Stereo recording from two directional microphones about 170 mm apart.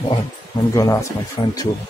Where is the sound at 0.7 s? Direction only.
20° left (ahead or behind).